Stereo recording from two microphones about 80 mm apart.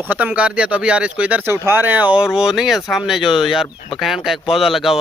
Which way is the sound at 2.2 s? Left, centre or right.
Centre.